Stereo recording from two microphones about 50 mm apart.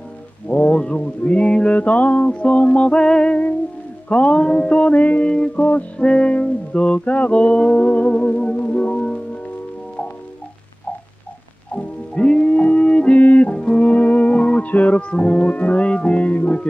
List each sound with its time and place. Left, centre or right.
0.5 s music: left
12.2 s music: left